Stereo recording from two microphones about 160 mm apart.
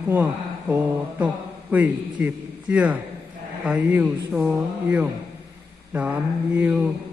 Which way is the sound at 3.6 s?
10° right (ahead or behind).